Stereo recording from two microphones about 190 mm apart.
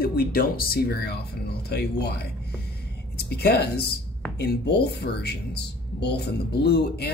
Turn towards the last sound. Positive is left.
turn(degrees=55)  # may be behind; listen again after turning